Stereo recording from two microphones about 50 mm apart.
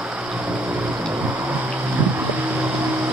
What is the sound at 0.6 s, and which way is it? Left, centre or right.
Vehicle, right.